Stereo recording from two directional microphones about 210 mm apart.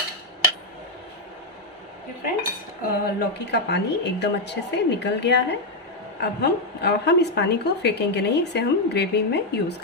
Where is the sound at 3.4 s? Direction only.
55° left (ahead or behind).